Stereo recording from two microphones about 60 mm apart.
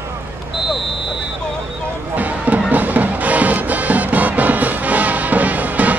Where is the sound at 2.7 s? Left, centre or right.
Right.